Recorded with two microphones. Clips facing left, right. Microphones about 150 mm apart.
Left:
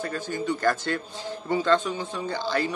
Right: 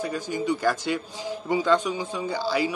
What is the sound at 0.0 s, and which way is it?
A man's voice, 10° right (ahead or behind).